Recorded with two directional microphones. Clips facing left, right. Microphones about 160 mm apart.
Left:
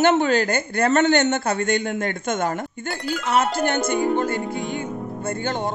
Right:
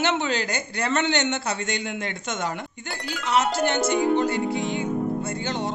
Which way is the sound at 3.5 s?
50° left (ahead or behind).